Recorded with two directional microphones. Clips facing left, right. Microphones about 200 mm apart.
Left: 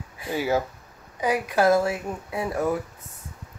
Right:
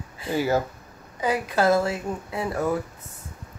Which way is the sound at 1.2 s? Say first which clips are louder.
Left 1 dB; 15° left (ahead or behind).